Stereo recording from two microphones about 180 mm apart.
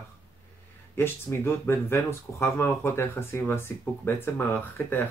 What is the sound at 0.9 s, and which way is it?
Speech, 10° left (ahead or behind).